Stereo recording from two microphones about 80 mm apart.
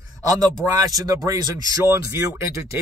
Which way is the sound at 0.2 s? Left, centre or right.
Right.